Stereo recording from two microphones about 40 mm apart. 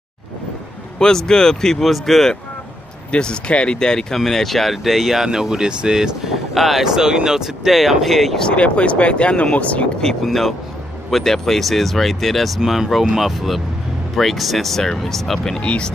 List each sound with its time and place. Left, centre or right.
0.9 s speech: centre
3.1 s speech: left
4.2 s speech: centre
6.5 s speech: centre
6.8 s speech: centre
8.0 s speech: centre
8.4 s speech: left
11.1 s speech: centre
12.5 s speech: centre
15.6 s speech: left